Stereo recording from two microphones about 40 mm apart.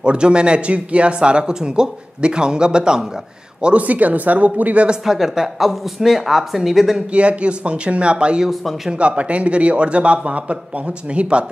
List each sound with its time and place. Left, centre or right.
0.0 s speech: right
3.7 s a man's voice: right
5.0 s speech: centre
7.1 s speech: right